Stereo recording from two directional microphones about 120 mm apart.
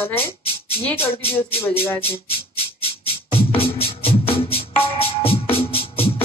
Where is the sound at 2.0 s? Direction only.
50° left (ahead or behind).